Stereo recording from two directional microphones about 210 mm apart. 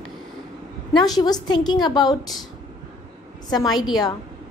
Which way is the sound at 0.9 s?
20° left (ahead or behind).